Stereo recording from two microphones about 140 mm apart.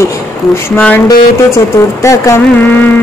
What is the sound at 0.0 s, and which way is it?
Speech, 20° left (ahead or behind).